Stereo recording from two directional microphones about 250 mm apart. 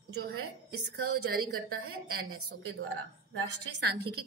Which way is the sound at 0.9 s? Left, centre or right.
Right.